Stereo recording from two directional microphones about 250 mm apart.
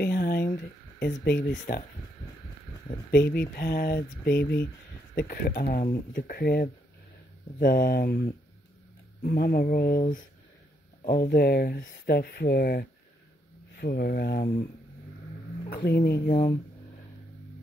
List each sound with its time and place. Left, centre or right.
0.0 s a sound: left
1.1 s speech: left
2.9 s speech: left
9.2 s speech: left
15.7 s speech: left